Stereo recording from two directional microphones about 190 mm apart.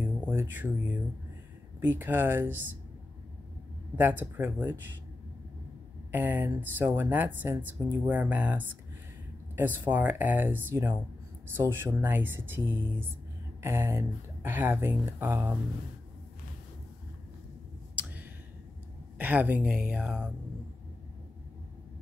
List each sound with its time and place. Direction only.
0.0 s a sound: 10° right (ahead or behind)
1.8 s speech: 10° right (ahead or behind)
3.9 s speech: 10° right (ahead or behind)
6.1 s speech: 10° right (ahead or behind)
19.1 s speech: 10° right (ahead or behind)